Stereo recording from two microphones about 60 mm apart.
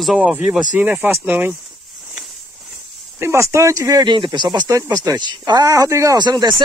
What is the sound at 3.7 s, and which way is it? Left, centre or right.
Speech, right.